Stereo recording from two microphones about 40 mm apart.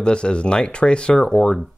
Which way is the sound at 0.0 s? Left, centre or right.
Left.